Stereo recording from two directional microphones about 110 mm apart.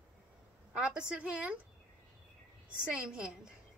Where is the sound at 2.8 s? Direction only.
10° right (ahead or behind).